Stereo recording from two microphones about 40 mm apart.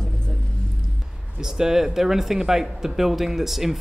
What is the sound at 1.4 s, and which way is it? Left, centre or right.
Speech, centre.